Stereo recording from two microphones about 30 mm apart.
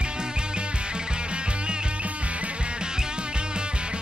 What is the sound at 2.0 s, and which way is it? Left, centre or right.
Music, right.